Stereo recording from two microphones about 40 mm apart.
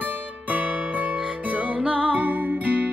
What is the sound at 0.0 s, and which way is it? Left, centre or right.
Music, right.